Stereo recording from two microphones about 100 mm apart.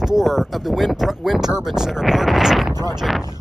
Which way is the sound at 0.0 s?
5° right (ahead or behind).